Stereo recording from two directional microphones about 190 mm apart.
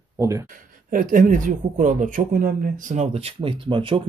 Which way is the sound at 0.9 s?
45° right (ahead or behind).